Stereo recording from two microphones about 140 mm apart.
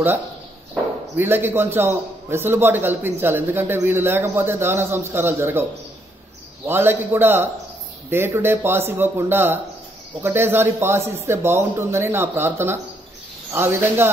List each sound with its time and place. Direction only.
1.1 s a man's voice: 15° right (ahead or behind)